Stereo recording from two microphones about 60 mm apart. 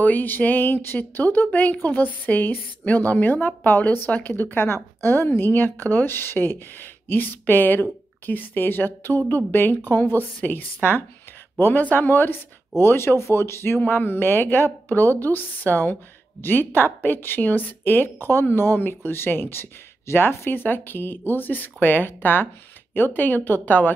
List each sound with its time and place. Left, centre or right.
0.0 s speech: left